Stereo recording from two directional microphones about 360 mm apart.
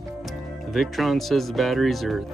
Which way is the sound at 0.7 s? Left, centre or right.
Centre.